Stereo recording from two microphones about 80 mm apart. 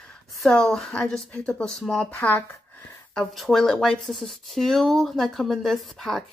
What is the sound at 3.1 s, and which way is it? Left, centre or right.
Speech, centre.